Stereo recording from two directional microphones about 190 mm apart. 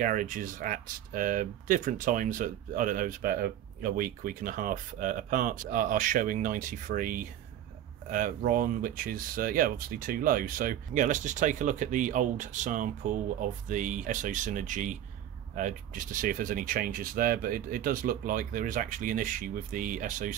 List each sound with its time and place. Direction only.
0.0 s speech: 45° right (ahead or behind)